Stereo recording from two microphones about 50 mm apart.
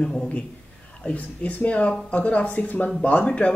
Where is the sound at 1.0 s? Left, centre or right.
Left.